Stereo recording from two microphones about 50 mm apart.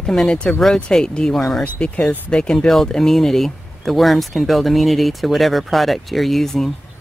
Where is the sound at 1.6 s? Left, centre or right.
Left; by 6.7 s centre.